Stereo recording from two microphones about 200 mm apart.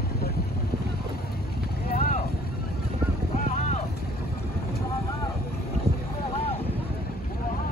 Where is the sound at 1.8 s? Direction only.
45° left (ahead or behind).